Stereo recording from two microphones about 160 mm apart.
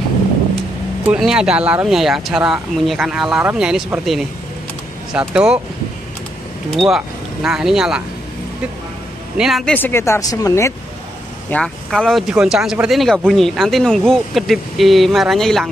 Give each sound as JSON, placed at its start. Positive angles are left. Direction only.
{"t": 1.0, "sound": "speech", "side_deg": -5}
{"t": 7.4, "sound": "speech", "side_deg": -5}
{"t": 9.4, "sound": "speech", "side_deg": 0}
{"t": 9.8, "sound": "speech", "side_deg": 15}
{"t": 11.5, "sound": "speech", "side_deg": 5}